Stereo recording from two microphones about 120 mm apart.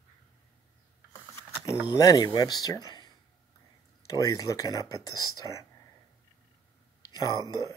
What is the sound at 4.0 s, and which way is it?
Speech, 30° left (ahead or behind).